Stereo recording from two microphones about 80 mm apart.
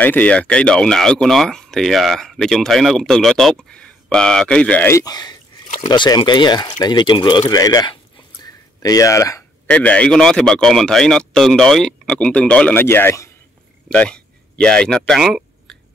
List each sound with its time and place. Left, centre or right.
0.0 s speech: left
5.0 s speech: left
9.7 s speech: centre
12.8 s a man's voice: left
13.8 s speech: centre